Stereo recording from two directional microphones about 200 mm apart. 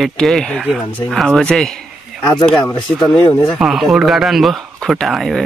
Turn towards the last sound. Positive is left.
turn(degrees=0)  # may be behind; listen again after turning